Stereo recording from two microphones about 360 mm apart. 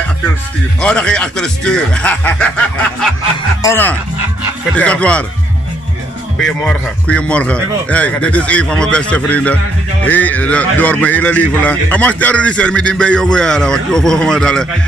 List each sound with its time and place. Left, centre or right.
0.7 s speech: centre
6.4 s speech: centre